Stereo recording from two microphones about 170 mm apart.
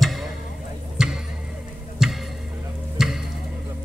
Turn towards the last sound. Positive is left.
turn(degrees=0)  # may be behind; listen again after turning